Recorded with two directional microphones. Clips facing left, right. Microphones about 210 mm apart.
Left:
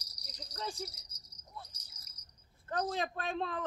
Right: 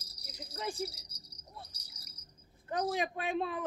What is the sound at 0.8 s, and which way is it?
Cricket, 30° right (ahead or behind).